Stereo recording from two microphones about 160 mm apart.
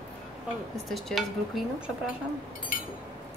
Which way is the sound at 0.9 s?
Centre (ahead or behind).